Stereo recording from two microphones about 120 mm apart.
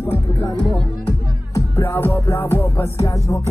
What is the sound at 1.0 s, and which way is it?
Music, 20° left (ahead or behind).